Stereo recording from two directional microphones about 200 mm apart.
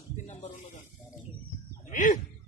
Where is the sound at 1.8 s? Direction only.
40° left (ahead or behind).